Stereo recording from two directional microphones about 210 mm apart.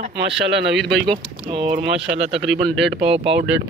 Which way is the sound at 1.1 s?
25° right (ahead or behind).